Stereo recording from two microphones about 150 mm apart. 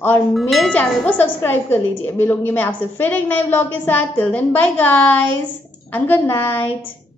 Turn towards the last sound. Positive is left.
turn(degrees=15)  # may be behind; listen again after turning